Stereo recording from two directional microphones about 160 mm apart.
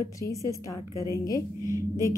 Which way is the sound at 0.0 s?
20° left (ahead or behind).